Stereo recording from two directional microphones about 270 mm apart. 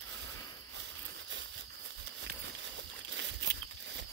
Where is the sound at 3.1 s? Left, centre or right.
Right.